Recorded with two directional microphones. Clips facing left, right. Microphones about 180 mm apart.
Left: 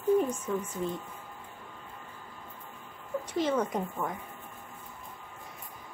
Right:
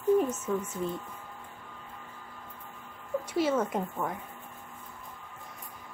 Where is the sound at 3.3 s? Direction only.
5° right (ahead or behind).